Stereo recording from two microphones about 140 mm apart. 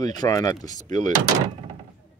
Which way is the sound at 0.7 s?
60° right (ahead or behind).